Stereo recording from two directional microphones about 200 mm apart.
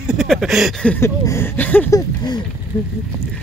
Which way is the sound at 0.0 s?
Centre (ahead or behind).